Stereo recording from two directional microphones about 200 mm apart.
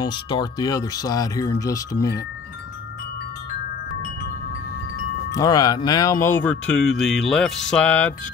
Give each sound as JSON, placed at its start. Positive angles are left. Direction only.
{"t": 0.0, "sound": "speech", "side_deg": 20}
{"t": 5.3, "sound": "speech", "side_deg": 20}